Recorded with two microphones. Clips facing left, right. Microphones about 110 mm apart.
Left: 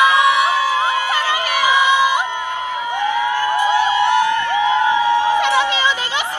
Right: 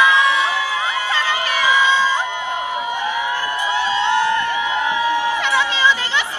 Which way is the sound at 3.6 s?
15° left (ahead or behind).